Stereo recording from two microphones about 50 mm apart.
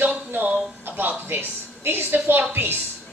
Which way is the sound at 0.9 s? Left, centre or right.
Right.